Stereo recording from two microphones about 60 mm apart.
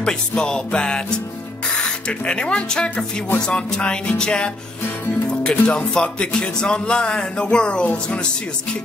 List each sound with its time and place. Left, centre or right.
0.0 s speech: centre
2.0 s speech: centre